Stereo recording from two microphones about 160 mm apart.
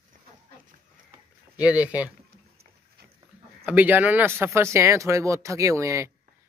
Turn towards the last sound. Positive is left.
turn(degrees=-20)  # may be behind; listen again after turning